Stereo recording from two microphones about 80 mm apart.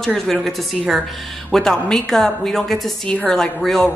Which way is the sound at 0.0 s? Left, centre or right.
Centre.